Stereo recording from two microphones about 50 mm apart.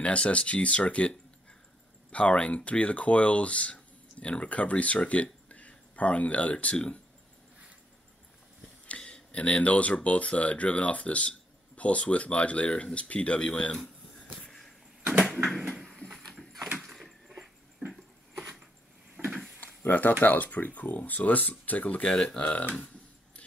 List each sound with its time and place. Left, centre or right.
0.0 s speech: left
2.1 s speech: left
8.8 s speech: left
15.3 s a sound: centre
16.2 s horse: centre
16.8 s a sound: centre
17.3 s a sound: centre
19.6 s speech: left
22.1 s speech: centre
22.4 s speech: left